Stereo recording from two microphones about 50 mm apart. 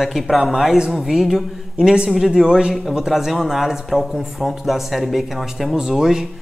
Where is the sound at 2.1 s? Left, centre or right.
Centre.